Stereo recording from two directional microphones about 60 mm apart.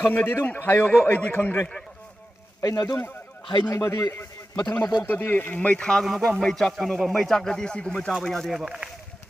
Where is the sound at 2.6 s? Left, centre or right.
Left.